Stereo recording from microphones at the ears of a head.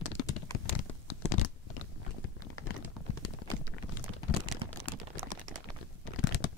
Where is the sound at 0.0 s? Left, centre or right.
Left.